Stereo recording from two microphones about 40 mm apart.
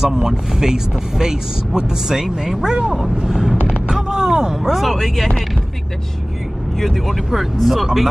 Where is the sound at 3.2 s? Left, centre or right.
Centre.